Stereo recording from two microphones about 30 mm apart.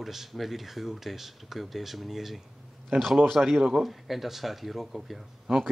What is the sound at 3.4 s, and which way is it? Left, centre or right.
Speech, right.